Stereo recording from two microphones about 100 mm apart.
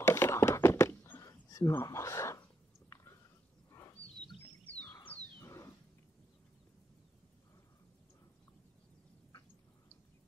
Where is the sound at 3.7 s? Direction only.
30° left (ahead or behind).